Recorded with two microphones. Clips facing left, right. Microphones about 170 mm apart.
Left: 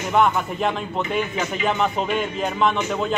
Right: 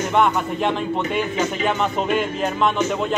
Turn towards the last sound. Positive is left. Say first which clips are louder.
# right 1 dB
turn(degrees=0)  # may be behind; listen again after turning